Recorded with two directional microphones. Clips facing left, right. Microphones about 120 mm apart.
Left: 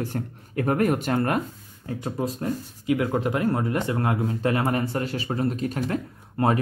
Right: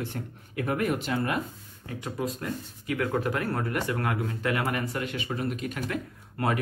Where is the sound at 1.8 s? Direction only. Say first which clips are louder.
Left 4 dB; 30° left (ahead or behind).